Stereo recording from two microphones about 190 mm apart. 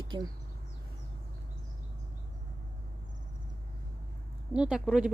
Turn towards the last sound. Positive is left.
turn(degrees=-5)  # may be behind; listen again after turning